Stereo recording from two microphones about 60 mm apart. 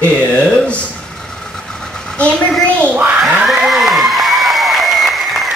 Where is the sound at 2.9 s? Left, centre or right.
Right.